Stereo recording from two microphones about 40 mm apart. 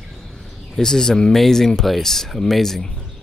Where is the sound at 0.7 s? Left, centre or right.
Centre.